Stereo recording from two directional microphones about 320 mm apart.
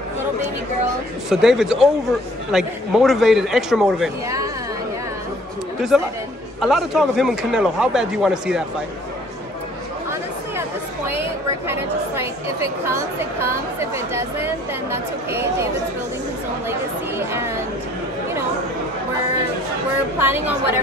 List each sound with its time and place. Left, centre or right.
1.3 s speech: centre
5.8 s speech: centre
11.6 s a sound: centre
13.2 s speech: centre
17.3 s a sound: centre
20.2 s speech: centre